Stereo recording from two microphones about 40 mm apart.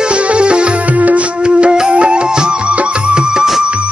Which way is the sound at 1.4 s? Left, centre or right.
Right.